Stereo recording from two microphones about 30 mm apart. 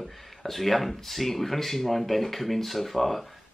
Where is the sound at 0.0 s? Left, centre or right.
Centre.